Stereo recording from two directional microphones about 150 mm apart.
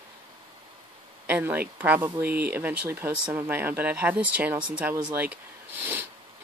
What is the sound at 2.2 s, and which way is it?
Speech, 90° right.